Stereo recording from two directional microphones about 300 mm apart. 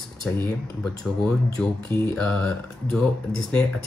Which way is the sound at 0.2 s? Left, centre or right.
Centre.